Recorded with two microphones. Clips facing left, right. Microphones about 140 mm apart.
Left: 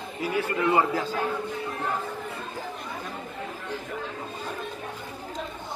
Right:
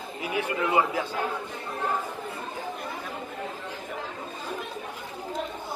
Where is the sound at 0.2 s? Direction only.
15° right (ahead or behind).